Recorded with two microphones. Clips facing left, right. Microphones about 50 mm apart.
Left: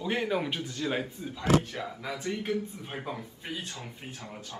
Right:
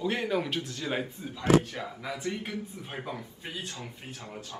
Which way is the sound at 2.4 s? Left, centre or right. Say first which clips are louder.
Left 5 dB; centre.